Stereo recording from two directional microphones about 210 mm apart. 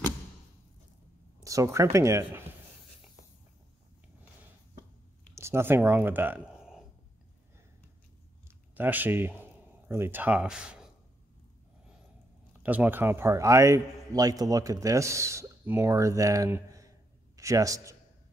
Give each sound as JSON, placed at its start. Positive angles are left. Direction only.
{"t": 1.4, "sound": "a man's voice", "side_deg": -15}
{"t": 5.3, "sound": "speech", "side_deg": -10}
{"t": 8.7, "sound": "a man's voice", "side_deg": -10}
{"t": 12.6, "sound": "a man's voice", "side_deg": -10}